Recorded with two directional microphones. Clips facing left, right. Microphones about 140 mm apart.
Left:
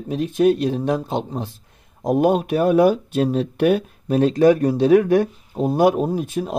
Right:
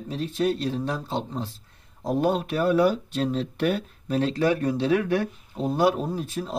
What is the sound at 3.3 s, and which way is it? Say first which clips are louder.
Speech: left 8 dB; 50° left (ahead or behind).